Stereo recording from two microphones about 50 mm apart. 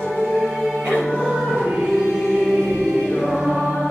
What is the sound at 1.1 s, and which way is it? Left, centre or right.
Music, centre.